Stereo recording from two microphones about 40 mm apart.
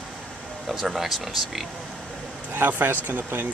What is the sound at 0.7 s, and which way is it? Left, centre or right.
Speech, centre.